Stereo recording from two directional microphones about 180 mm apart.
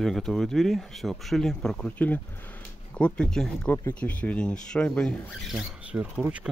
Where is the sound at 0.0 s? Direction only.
Centre (ahead or behind).